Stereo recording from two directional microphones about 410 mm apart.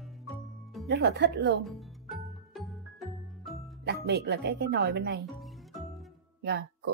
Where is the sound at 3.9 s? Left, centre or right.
Right.